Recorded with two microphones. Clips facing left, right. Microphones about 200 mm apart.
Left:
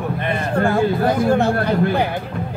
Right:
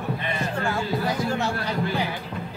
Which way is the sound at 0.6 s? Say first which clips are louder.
Left 11 dB; 55° left (ahead or behind).